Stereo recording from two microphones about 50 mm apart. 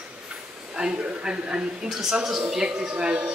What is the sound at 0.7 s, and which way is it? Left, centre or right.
A man's voice, centre.